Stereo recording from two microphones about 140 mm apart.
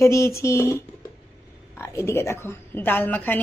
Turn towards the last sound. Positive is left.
turn(degrees=15)  # may be behind; listen again after turning